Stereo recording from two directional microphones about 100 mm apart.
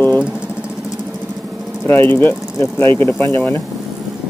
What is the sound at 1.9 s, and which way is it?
Speech, 20° left (ahead or behind).